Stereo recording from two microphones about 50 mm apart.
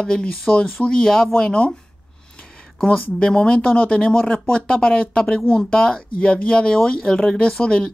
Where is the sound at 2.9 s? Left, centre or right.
Centre.